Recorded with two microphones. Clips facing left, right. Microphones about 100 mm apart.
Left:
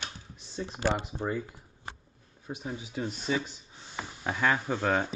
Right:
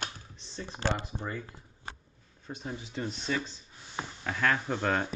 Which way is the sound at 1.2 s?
25° left (ahead or behind).